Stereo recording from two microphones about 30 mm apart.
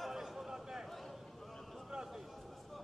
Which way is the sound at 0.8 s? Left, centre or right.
Centre.